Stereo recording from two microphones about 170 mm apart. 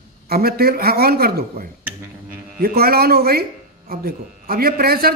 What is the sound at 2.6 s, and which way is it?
Speech, 65° right (ahead or behind).